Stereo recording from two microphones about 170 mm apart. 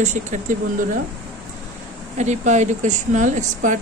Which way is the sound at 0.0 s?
45° right (ahead or behind).